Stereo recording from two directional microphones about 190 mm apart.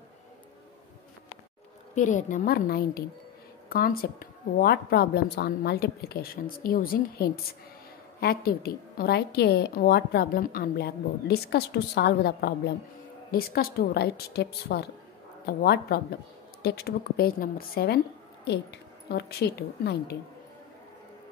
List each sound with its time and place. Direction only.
2.0 s a woman's voice: 40° left (ahead or behind); by 20.2 s 55° left (ahead or behind)